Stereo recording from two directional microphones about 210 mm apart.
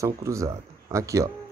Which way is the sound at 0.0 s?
15° right (ahead or behind).